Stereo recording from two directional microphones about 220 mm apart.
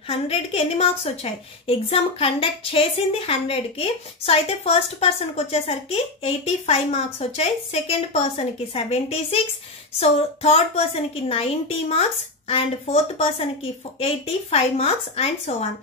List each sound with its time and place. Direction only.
0.1 s a woman's voice: 25° left (ahead or behind)